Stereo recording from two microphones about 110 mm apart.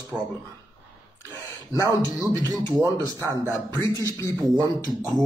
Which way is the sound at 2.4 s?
35° right (ahead or behind).